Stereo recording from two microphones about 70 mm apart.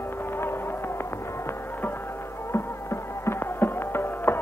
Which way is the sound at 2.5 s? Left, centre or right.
Left.